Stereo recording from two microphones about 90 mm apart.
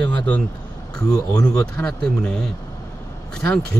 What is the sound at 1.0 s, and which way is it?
Speech, 45° left (ahead or behind).